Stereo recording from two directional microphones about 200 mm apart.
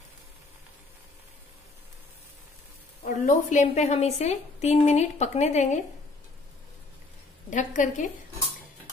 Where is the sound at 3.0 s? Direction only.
35° left (ahead or behind).